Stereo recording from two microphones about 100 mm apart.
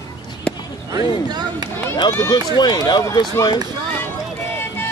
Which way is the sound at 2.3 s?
50° left (ahead or behind).